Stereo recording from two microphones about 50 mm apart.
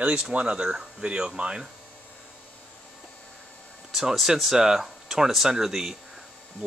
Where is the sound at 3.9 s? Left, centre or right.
Centre.